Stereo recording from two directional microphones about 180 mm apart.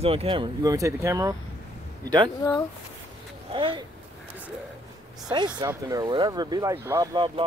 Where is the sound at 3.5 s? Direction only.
30° right (ahead or behind).